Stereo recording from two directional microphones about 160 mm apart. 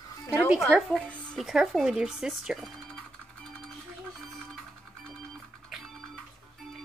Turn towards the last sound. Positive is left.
turn(degrees=0)  # may be behind; listen again after turning